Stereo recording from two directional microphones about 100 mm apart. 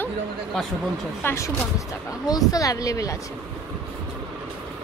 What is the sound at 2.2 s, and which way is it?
Speech, 40° left (ahead or behind).